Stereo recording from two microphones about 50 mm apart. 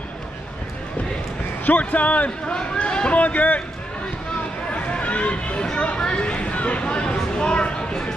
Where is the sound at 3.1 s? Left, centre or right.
Left.